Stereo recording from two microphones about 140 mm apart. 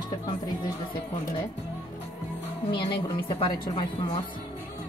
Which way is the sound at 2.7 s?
35° left (ahead or behind).